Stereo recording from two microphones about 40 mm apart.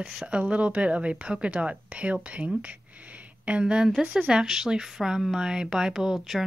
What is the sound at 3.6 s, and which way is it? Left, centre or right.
A woman's voice, right.